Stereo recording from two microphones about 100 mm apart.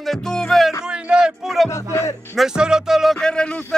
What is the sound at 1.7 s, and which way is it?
Music, 30° left (ahead or behind).